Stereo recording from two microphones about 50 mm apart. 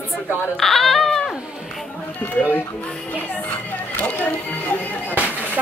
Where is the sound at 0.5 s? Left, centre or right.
Centre.